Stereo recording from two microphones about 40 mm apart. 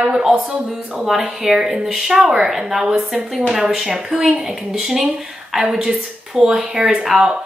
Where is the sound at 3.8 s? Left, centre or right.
Right.